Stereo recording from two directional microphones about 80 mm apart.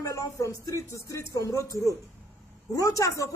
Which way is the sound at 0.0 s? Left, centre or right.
Left.